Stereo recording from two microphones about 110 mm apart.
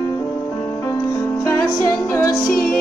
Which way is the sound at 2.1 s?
20° left (ahead or behind).